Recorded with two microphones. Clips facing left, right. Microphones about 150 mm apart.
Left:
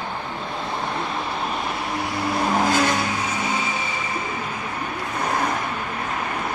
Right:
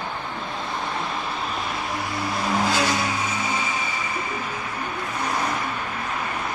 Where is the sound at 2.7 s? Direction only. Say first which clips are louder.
Left 3 dB; 50° left (ahead or behind).